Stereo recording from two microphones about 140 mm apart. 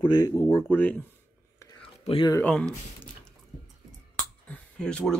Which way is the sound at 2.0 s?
40° left (ahead or behind).